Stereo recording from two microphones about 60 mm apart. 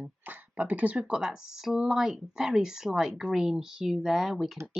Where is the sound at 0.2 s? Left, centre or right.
Right.